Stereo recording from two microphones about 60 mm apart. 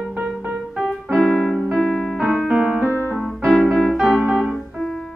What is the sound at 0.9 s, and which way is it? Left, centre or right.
Keyboard, centre.